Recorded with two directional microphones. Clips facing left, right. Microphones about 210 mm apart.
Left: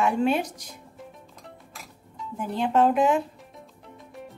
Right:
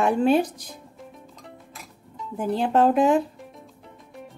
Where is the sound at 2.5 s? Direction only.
35° right (ahead or behind).